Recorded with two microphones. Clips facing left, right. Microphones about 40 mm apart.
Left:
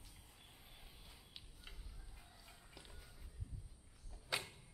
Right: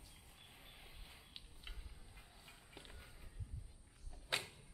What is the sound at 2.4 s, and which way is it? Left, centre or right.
Walk, right.